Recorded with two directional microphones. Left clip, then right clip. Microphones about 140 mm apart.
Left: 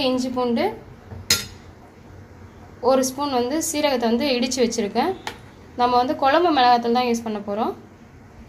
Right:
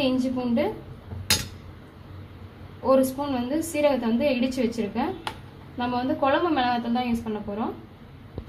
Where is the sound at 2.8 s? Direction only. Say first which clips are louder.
Left 2 dB; 50° left (ahead or behind).